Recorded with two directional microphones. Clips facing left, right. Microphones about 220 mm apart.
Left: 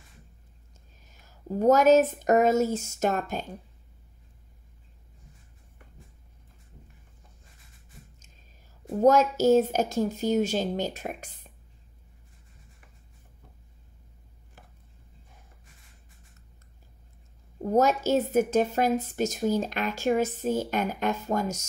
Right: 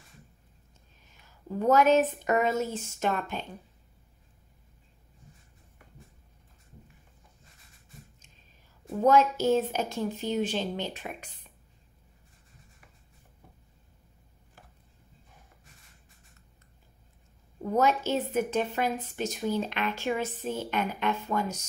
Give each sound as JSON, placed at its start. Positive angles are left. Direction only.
{"t": 1.1, "sound": "speech", "side_deg": 40}
{"t": 9.0, "sound": "speech", "side_deg": 40}
{"t": 17.6, "sound": "speech", "side_deg": 40}